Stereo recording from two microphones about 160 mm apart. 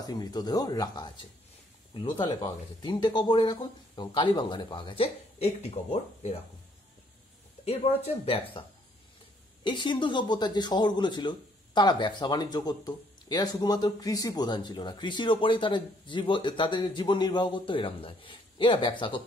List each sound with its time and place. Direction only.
0.0 s speech: 25° left (ahead or behind); by 6.3 s 40° left (ahead or behind)
7.6 s speech: 40° left (ahead or behind)